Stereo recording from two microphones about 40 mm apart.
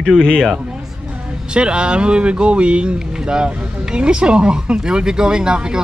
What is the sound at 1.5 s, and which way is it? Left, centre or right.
Speech, right.